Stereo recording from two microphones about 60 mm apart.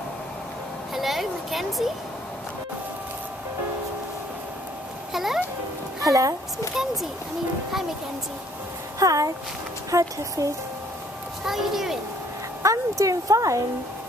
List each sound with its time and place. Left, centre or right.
0.9 s speech: centre
5.1 s a sound: centre
6.0 s speech: right
9.0 s speech: right
11.4 s speech: centre
12.6 s speech: right